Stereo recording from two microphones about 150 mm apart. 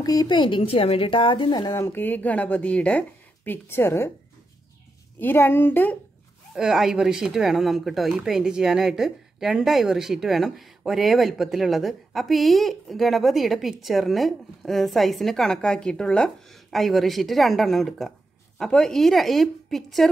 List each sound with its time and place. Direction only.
0.0 s speech: 25° left (ahead or behind)
5.2 s speech: 15° left (ahead or behind)
6.5 s speech: 5° right (ahead or behind)